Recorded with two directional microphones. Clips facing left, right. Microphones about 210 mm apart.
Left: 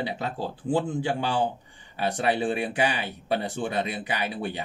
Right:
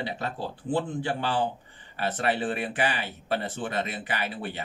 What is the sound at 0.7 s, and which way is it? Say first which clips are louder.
Speech: left 2 dB; 10° left (ahead or behind).